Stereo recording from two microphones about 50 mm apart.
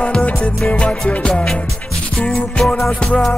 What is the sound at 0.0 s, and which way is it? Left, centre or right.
Music, left.